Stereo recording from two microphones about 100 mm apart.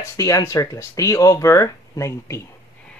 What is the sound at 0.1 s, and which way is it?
Speech, 30° left (ahead or behind).